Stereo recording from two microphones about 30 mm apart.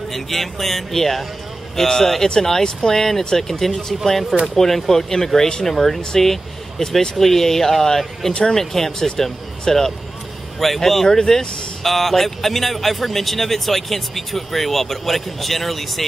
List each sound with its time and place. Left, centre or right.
0.1 s speech: centre
11.1 s speech: centre